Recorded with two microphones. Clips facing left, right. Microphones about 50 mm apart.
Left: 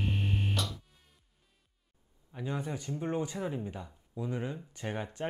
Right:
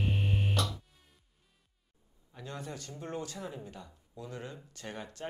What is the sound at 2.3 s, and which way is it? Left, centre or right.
Speech, centre.